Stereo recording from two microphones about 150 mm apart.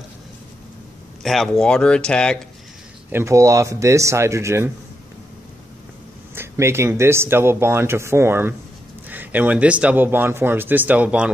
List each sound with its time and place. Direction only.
1.2 s speech: centre (ahead or behind)
3.1 s speech: 15° right (ahead or behind)
6.3 s speech: 15° right (ahead or behind)